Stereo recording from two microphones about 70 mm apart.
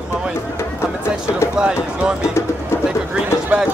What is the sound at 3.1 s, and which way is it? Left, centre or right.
Clip-clop, centre.